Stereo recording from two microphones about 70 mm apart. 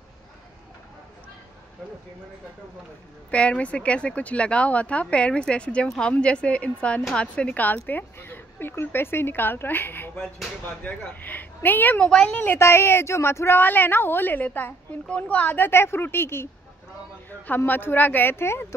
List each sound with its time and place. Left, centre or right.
3.3 s a woman's voice: centre
12.0 s speech: centre
12.5 s a woman's voice: left
17.6 s a woman's voice: left